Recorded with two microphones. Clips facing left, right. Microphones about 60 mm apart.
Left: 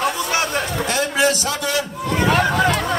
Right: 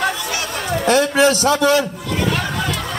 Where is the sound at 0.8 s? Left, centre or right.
Right.